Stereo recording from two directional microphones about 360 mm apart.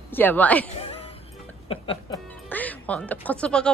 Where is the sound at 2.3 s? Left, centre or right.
Centre.